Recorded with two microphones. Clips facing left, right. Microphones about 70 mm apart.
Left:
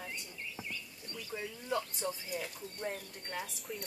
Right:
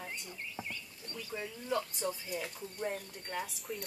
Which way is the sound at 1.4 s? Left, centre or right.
Centre.